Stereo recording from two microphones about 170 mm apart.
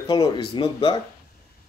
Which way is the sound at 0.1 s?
30° left (ahead or behind).